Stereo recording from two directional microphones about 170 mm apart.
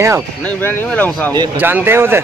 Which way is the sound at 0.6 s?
10° left (ahead or behind).